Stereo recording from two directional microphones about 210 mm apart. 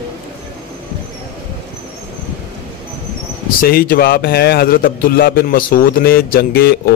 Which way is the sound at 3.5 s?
45° left (ahead or behind).